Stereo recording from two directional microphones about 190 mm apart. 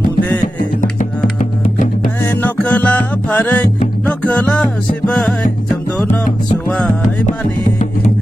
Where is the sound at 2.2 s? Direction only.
10° left (ahead or behind).